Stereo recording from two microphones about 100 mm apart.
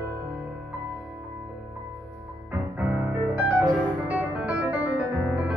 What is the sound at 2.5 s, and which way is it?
Music, 20° right (ahead or behind).